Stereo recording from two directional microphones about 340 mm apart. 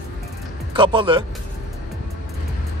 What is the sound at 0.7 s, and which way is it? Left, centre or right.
Speech, centre.